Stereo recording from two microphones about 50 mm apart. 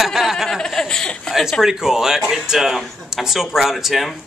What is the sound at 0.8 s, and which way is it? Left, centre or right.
Speech, centre.